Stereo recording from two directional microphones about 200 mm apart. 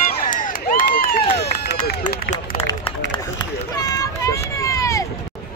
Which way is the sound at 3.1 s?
20° left (ahead or behind).